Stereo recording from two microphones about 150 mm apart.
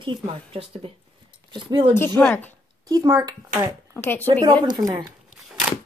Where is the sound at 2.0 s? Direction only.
15° left (ahead or behind).